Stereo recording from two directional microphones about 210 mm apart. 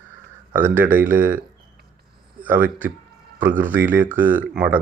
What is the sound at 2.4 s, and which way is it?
Speech, 10° right (ahead or behind).